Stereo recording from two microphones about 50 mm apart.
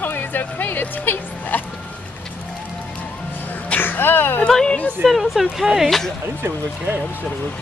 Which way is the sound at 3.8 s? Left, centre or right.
Left.